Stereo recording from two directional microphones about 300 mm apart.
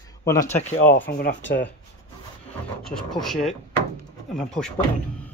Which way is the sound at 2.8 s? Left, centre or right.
Centre.